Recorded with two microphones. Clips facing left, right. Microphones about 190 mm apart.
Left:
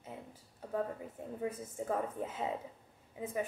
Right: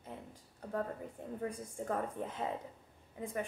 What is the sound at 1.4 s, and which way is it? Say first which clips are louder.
Speech: left 2 dB; 10° left (ahead or behind).